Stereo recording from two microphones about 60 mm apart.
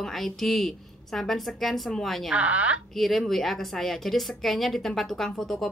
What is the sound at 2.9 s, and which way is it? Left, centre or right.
A woman's voice, centre.